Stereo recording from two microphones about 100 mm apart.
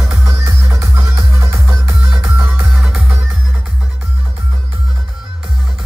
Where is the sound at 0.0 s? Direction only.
10° right (ahead or behind).